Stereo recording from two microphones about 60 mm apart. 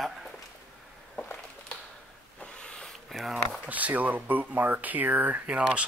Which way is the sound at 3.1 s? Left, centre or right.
Centre.